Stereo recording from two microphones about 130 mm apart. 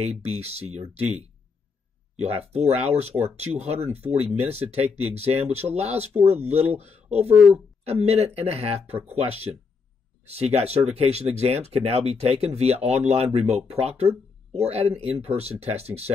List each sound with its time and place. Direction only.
0.0 s speech: 50° right (ahead or behind)
2.1 s speech: 55° right (ahead or behind)
10.2 s speech: 55° right (ahead or behind)